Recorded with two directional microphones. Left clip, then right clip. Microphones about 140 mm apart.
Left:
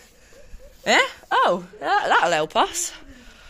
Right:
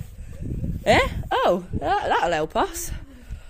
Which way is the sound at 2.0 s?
30° right (ahead or behind).